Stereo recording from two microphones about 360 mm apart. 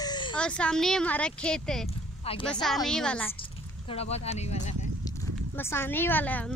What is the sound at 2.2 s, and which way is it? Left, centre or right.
Speech, centre.